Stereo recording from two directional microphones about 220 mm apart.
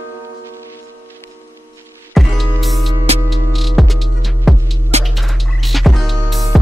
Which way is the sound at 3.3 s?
Centre (ahead or behind).